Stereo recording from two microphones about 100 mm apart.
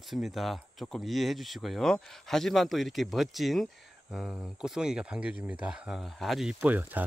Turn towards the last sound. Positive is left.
turn(degrees=-15)  # may be behind; listen again after turning